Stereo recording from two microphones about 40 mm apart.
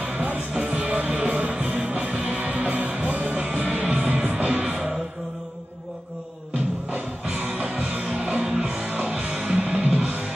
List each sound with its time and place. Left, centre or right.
0.6 s music: right
4.4 s music: right
6.9 s music: right
8.8 s music: right
9.1 s music: right